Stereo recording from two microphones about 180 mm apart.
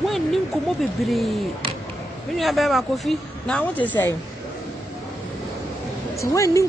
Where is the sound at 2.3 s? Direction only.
Centre (ahead or behind).